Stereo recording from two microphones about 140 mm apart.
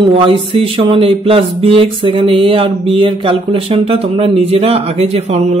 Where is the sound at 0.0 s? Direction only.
40° right (ahead or behind).